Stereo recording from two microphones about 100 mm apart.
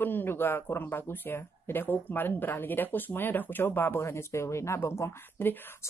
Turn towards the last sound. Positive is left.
turn(degrees=20)  # may be behind; listen again after turning